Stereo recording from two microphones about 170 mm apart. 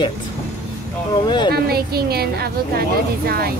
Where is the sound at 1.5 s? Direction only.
65° right (ahead or behind).